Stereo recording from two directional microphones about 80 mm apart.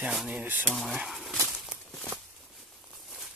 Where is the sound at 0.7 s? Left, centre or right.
Centre.